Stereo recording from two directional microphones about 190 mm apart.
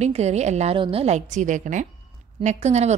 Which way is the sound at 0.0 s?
35° right (ahead or behind).